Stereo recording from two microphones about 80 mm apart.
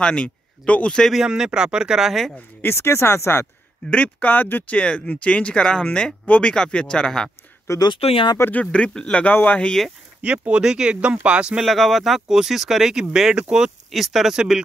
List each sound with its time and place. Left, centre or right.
0.0 s speech: centre
1.1 s speech: centre
2.6 s speech: left
3.9 s speech: centre
7.8 s speech: left
8.5 s speech: centre
9.7 s speech: centre
10.2 s speech: centre
11.6 s speech: centre